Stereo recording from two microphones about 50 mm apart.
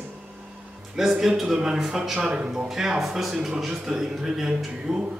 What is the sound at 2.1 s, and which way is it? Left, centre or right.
A man's voice, centre.